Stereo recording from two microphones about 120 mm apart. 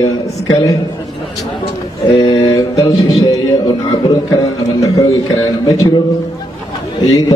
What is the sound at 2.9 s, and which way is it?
A man's voice, 35° left (ahead or behind).